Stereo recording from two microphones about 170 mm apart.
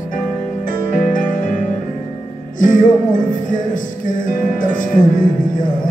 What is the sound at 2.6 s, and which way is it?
Music, 50° left (ahead or behind).